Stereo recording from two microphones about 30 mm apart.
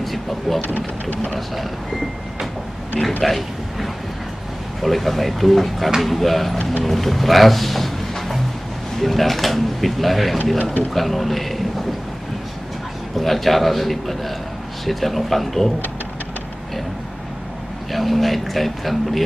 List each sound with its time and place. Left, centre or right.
0.0 s speech: centre
2.9 s a man's voice: left
3.3 s speech: centre
8.1 s music: centre
8.9 s speech: centre
10.6 s speech: left
10.9 s speech: centre
13.2 s speech: centre
17.9 s speech: centre